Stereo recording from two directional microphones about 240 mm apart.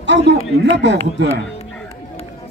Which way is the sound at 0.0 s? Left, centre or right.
Right.